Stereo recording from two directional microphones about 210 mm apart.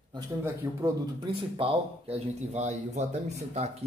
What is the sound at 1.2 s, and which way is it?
Speech, 25° right (ahead or behind).